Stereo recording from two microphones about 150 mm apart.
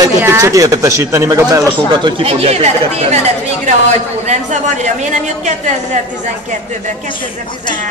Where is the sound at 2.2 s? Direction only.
40° right (ahead or behind).